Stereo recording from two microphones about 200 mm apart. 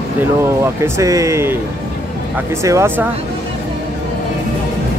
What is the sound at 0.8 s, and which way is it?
Speech, 15° right (ahead or behind).